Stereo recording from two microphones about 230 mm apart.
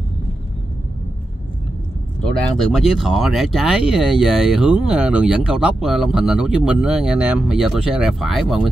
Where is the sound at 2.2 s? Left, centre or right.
Centre.